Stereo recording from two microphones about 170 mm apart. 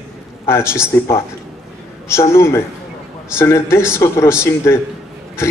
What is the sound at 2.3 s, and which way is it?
Speech, 15° left (ahead or behind).